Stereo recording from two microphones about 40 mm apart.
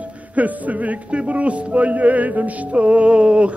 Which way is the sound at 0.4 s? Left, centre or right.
Right.